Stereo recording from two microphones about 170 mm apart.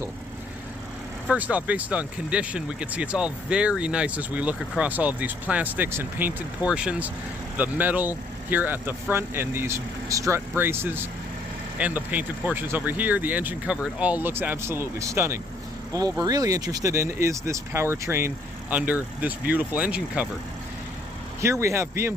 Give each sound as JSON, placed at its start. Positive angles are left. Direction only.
{"t": 1.3, "sound": "speech", "side_deg": -10}
{"t": 21.4, "sound": "speech", "side_deg": -15}